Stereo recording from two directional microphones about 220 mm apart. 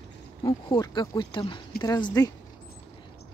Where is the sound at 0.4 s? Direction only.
20° left (ahead or behind).